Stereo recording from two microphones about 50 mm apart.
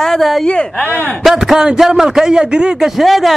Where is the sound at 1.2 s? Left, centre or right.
Centre.